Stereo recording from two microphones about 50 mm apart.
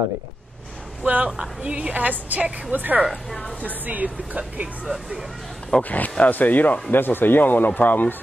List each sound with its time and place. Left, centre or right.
1.0 s a woman's voice: right
1.3 s a woman's voice: centre
4.8 s speech: centre
5.8 s speech: left